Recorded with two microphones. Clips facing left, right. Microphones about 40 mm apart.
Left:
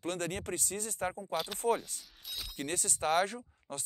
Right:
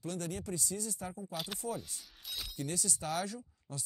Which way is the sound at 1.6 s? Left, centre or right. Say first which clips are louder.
Left 10 dB; left.